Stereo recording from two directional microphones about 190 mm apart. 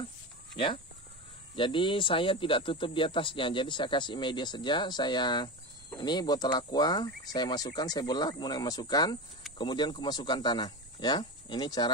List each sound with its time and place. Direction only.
1.5 s speech: 25° left (ahead or behind)